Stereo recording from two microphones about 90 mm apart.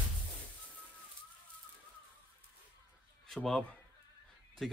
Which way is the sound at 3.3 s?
5° left (ahead or behind).